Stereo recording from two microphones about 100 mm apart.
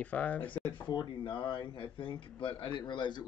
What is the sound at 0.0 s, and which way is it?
Speech, 15° left (ahead or behind).